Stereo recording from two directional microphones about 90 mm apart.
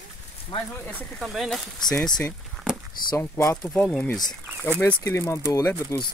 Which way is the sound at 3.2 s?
35° left (ahead or behind).